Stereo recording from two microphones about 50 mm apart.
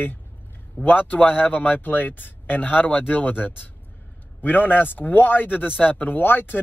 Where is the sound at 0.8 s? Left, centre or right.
Left.